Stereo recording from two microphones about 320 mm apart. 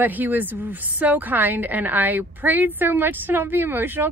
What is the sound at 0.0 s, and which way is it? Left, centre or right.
A woman's voice, centre.